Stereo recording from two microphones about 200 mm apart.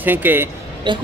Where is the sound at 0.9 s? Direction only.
25° right (ahead or behind).